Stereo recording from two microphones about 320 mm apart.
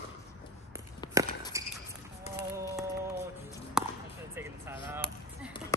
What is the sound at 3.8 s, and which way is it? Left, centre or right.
Basketball bounce, centre.